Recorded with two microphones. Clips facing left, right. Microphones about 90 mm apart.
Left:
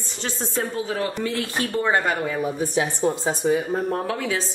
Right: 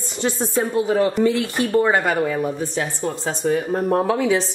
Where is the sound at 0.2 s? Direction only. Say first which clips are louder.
Right 6 dB; 15° right (ahead or behind).